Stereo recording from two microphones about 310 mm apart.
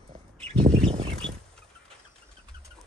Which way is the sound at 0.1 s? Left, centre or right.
Centre.